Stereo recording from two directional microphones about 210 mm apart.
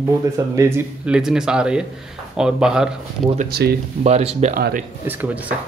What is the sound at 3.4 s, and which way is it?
Speech, 50° right (ahead or behind).